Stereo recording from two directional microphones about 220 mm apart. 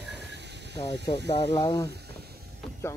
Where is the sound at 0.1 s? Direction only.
50° right (ahead or behind).